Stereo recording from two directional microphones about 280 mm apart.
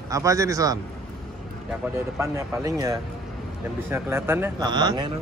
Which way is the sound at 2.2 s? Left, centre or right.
Centre.